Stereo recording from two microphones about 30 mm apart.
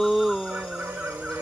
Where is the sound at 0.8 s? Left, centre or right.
Right.